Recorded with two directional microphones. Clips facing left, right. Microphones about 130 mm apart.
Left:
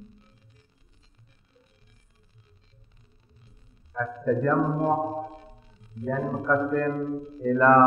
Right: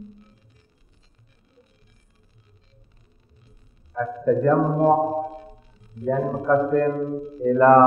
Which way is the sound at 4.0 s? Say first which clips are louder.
Right 5 dB; 35° right (ahead or behind).